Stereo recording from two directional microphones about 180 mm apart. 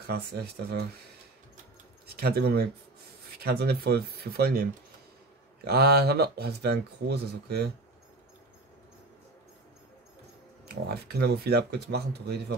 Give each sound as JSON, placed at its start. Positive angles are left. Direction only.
{"t": 0.1, "sound": "speech", "side_deg": -60}
{"t": 2.0, "sound": "speech", "side_deg": -60}
{"t": 5.7, "sound": "speech", "side_deg": -60}
{"t": 10.7, "sound": "speech", "side_deg": -60}